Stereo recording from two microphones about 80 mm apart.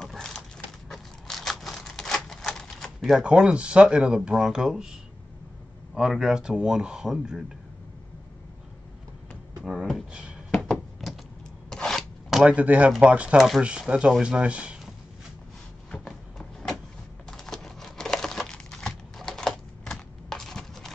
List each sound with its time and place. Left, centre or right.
0.0 s a sound: centre
0.8 s typewriter: centre
3.2 s speech: centre
5.9 s speech: centre
9.6 s beatboxing: centre
10.5 s a sound: centre
12.5 s speech: centre
15.9 s a sound: centre
17.3 s crumpling: centre